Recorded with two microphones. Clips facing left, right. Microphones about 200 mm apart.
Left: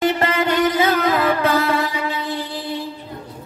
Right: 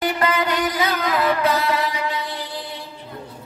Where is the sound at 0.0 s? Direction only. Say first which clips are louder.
Left 3 dB; 25° left (ahead or behind).